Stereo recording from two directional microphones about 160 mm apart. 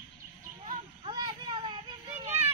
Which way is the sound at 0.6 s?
30° right (ahead or behind).